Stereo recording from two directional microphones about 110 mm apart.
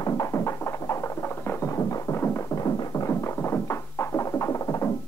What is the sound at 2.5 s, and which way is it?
Music, 35° left (ahead or behind).